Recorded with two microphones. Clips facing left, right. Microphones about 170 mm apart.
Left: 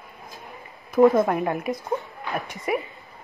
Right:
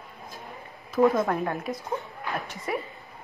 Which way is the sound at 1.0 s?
15° left (ahead or behind).